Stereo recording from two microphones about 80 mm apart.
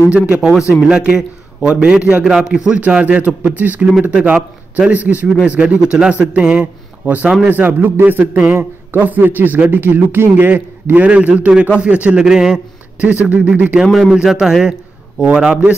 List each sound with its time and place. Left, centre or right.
0.1 s a man's voice: centre
2.8 s a man's voice: centre
13.8 s a man's voice: centre